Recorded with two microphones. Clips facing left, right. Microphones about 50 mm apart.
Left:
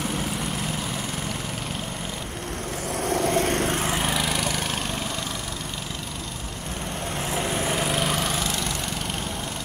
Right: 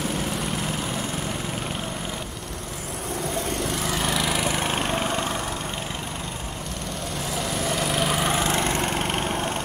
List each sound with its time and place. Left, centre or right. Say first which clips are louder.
3.1 s vehicle: left 6 dB; left
4.0 s lawn mower: right 1 dB; centre
4.4 s lawn mower: right 3 dB; right
7.3 s vehicle: left 1 dB; left
7.8 s lawn mower: right 1 dB; centre
8.2 s vehicle: right 4 dB; right